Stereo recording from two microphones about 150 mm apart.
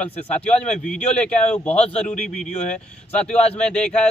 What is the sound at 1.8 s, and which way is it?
Speech, 45° left (ahead or behind).